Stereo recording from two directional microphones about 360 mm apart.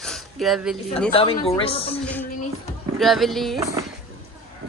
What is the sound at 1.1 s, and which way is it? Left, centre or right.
Speech, centre.